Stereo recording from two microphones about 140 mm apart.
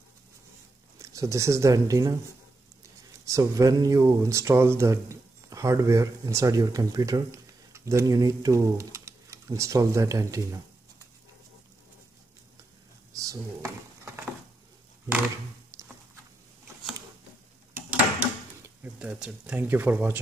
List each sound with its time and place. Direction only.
0.9 s speech: 20° right (ahead or behind)
3.3 s speech: 25° right (ahead or behind)
13.1 s a sound: 25° right (ahead or behind)
17.7 s drawer open or close: 10° right (ahead or behind)